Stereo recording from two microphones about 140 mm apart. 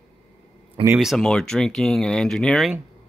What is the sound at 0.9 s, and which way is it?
Speech, centre (ahead or behind).